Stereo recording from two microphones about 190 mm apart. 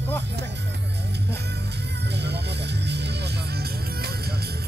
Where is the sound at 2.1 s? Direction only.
65° right (ahead or behind).